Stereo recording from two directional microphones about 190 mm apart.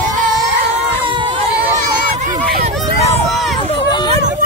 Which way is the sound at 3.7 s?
20° left (ahead or behind).